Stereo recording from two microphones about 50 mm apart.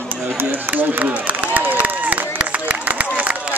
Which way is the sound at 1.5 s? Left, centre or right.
Right.